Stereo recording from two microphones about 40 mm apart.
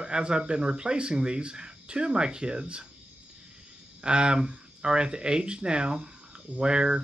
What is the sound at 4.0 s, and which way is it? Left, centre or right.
Speech, right.